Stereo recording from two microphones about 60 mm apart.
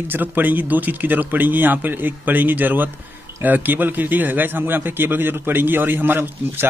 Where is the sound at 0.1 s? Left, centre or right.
Right.